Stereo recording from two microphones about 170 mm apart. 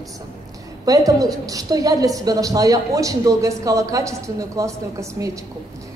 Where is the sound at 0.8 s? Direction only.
20° right (ahead or behind).